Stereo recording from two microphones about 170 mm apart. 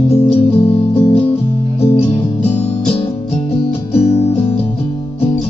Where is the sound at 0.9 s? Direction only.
35° left (ahead or behind).